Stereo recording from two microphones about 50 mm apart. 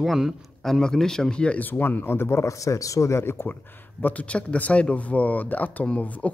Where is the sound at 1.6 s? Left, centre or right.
Left.